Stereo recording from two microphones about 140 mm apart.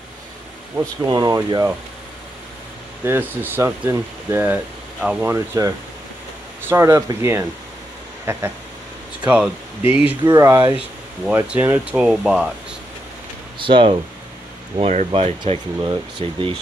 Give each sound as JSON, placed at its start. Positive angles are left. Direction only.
{"t": 1.0, "sound": "speech", "side_deg": -30}
{"t": 3.1, "sound": "speech", "side_deg": -15}
{"t": 10.2, "sound": "speech", "side_deg": -25}
{"t": 11.2, "sound": "speech", "side_deg": -10}
{"t": 13.6, "sound": "speech", "side_deg": -35}
{"t": 14.8, "sound": "speech", "side_deg": -55}
{"t": 15.2, "sound": "speech", "side_deg": -40}